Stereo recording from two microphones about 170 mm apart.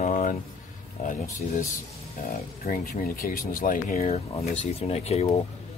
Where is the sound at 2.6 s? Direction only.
55° left (ahead or behind).